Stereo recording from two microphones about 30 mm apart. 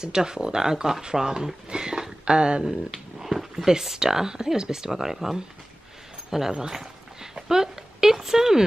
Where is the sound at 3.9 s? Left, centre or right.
Right.